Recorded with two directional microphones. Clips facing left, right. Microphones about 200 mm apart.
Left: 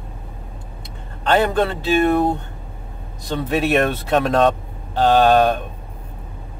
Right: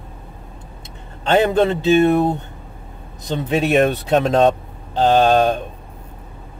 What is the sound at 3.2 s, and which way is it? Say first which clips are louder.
Speech: right 1 dB; 20° right (ahead or behind).